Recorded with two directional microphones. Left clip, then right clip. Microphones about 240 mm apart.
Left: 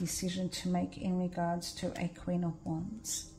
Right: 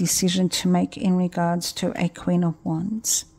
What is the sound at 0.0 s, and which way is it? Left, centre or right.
Speech, right.